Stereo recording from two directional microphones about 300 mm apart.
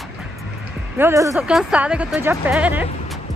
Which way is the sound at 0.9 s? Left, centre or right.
Centre.